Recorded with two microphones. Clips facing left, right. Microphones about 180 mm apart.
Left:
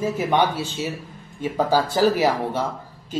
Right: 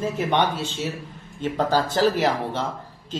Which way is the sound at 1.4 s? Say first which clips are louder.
Left 1 dB; 10° left (ahead or behind).